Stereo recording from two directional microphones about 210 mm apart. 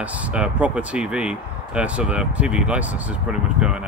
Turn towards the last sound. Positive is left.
turn(degrees=-5)  # may be behind; listen again after turning